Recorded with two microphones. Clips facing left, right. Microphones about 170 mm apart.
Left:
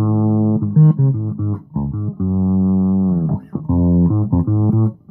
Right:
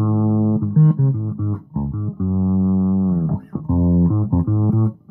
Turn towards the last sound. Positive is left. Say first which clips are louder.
# left 2 dB
turn(degrees=30)  # may be behind; listen again after turning